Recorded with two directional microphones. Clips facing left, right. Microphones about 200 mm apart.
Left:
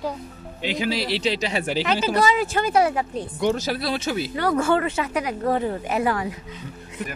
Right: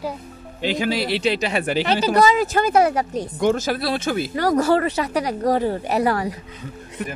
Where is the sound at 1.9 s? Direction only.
40° right (ahead or behind).